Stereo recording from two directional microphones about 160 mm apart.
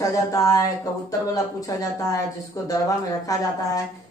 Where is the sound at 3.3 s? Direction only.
20° left (ahead or behind).